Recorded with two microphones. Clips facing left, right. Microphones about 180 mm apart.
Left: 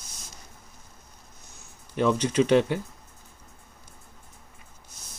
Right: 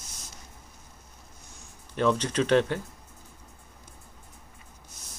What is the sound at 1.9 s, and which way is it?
Speech, 10° left (ahead or behind).